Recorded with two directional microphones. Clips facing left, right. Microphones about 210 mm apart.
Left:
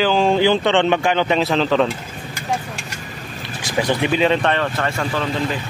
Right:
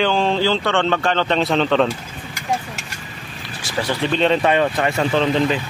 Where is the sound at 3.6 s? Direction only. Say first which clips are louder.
Left 3 dB; 15° left (ahead or behind).